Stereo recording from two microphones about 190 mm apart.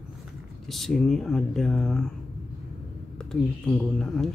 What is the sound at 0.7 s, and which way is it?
Speech, centre (ahead or behind).